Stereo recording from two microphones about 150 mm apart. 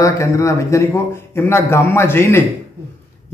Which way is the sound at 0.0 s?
20° left (ahead or behind).